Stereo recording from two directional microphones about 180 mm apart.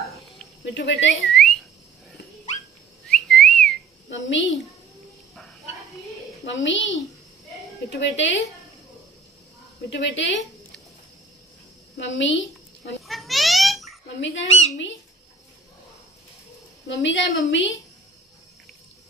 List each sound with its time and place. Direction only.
0.7 s speech: 75° left (ahead or behind)
1.2 s whistling: 5° left (ahead or behind)
3.1 s whistling: 5° left (ahead or behind)
4.1 s a child's voice: 90° left
6.4 s a child's voice: 90° left
9.8 s a woman's voice: 90° left
12.0 s a woman's voice: 90° left
13.0 s babbling: centre (ahead or behind)
14.0 s speech: 85° left
16.8 s a woman's voice: 80° left